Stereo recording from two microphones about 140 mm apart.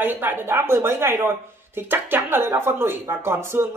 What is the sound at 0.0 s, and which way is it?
Speech, 15° right (ahead or behind).